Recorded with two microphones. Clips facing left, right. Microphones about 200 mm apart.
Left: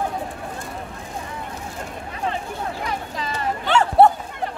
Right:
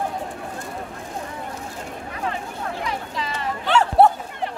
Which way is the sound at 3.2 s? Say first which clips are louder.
Left 1 dB; 45° left (ahead or behind).